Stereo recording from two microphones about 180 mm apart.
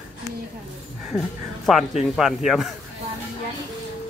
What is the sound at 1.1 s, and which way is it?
Speech, centre (ahead or behind).